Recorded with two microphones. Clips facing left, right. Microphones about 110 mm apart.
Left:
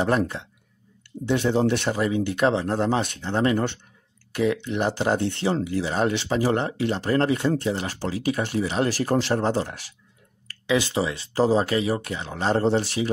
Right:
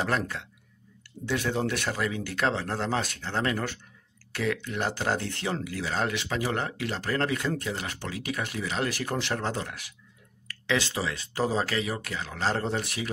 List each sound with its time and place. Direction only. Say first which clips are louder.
0.0 s speech: left 6 dB; 25° left (ahead or behind)
10.7 s speech: left 5 dB; 20° left (ahead or behind)